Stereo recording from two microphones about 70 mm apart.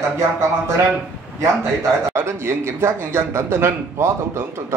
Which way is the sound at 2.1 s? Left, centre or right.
Right.